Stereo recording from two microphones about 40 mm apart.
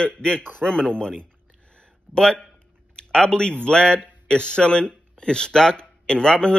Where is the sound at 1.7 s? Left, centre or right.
Left.